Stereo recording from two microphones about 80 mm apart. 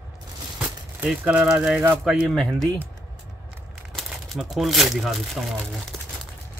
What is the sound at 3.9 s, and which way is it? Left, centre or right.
Speech, centre.